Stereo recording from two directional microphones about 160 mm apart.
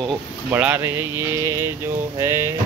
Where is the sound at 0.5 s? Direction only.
15° right (ahead or behind).